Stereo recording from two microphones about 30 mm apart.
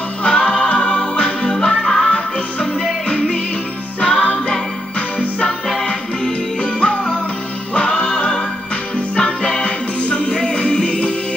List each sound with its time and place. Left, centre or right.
0.2 s music: left
1.7 s music: centre
2.0 s music: left
4.0 s music: left
6.6 s music: left